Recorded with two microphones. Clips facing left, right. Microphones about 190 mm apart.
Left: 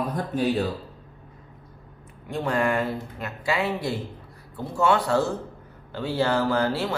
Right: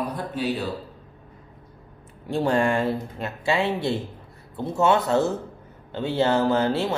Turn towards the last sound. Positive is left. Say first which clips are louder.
# right 2 dB
turn(degrees=-20)  # may be behind; listen again after turning